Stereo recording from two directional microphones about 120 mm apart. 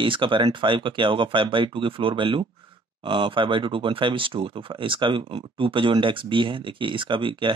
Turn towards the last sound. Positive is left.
turn(degrees=-45)  # may be behind; listen again after turning